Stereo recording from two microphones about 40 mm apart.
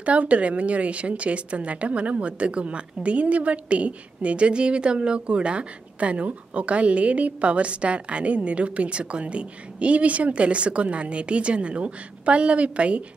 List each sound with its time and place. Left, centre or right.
0.0 s a woman's voice: right